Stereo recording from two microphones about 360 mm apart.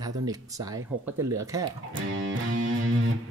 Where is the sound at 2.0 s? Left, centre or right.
Right.